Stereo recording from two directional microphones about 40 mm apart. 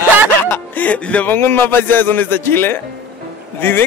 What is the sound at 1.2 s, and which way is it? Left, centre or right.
Music, left.